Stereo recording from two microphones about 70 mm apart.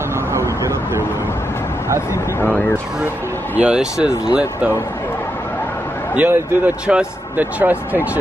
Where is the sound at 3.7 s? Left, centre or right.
Centre.